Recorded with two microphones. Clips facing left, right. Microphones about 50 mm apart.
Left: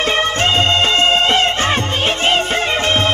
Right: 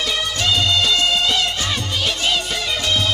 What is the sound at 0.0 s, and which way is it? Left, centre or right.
Music, left.